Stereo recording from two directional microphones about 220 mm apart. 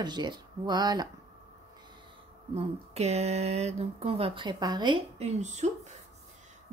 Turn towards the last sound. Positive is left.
turn(degrees=-30)  # may be behind; listen again after turning